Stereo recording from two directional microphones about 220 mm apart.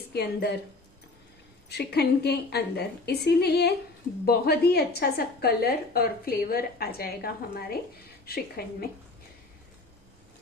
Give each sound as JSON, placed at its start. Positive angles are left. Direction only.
{"t": 0.1, "sound": "a woman's voice", "side_deg": 45}
{"t": 1.7, "sound": "a woman's voice", "side_deg": 45}